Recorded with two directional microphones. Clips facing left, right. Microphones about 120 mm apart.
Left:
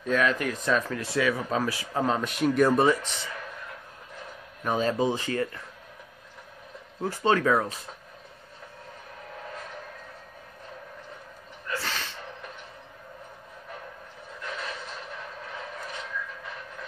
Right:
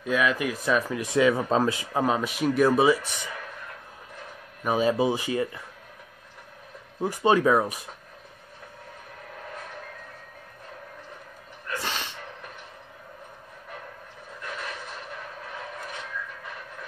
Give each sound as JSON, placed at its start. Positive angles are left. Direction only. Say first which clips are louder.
{"t": 0.0, "sound": "speech", "louder": "even", "side_deg": -10}
{"t": 2.0, "sound": "speech", "louder": "even", "side_deg": -5}
{"t": 4.6, "sound": "speech", "louder": "right 2 dB", "side_deg": -10}
{"t": 7.0, "sound": "speech", "louder": "right 3 dB", "side_deg": -15}
{"t": 11.7, "sound": "a sound", "louder": "right 1 dB", "side_deg": -15}